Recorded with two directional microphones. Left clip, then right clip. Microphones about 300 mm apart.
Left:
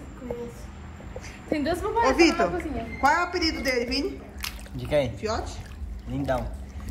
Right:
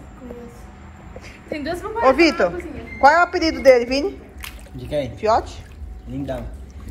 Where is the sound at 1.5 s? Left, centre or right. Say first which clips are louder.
Even; left.